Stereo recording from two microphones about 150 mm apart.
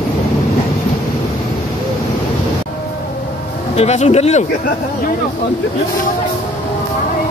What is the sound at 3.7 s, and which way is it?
Speech, 45° left (ahead or behind).